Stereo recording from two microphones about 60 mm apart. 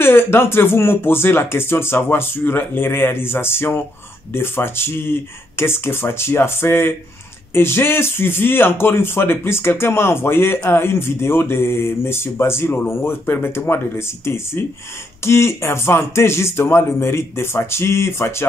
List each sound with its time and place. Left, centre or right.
0.0 s speech: left